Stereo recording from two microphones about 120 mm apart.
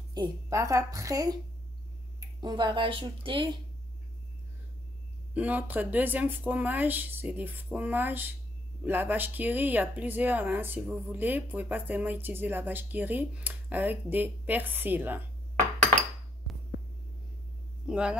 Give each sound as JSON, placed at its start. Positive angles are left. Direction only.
{"t": 0.1, "sound": "a woman's voice", "side_deg": -30}
{"t": 5.3, "sound": "speech", "side_deg": -10}
{"t": 17.8, "sound": "speech", "side_deg": -10}